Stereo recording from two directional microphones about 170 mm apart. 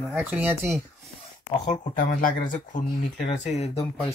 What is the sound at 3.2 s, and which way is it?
Speech, 40° left (ahead or behind).